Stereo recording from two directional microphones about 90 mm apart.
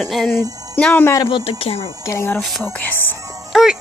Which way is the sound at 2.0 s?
30° left (ahead or behind).